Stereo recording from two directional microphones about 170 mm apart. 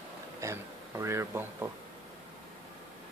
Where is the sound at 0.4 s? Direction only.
15° right (ahead or behind).